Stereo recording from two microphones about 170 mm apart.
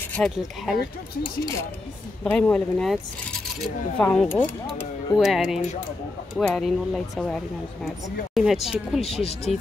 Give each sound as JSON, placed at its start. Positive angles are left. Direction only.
{"t": 0.1, "sound": "speech", "side_deg": 0}
{"t": 2.2, "sound": "speech", "side_deg": 10}
{"t": 9.0, "sound": "speech", "side_deg": 35}